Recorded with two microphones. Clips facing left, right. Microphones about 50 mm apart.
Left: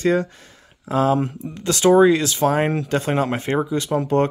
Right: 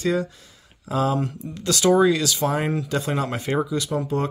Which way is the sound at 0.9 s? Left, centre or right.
Left.